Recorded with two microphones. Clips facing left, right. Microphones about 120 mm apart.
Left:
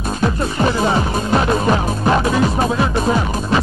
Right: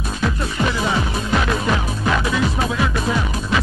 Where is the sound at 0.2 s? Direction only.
40° left (ahead or behind).